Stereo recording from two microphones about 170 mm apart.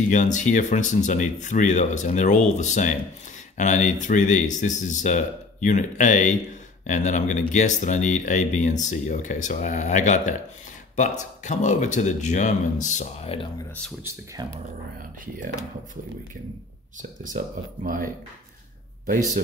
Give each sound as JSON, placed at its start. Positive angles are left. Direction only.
{"t": 0.1, "sound": "speech", "side_deg": 45}
{"t": 14.0, "sound": "speech", "side_deg": -20}
{"t": 17.2, "sound": "speech", "side_deg": -50}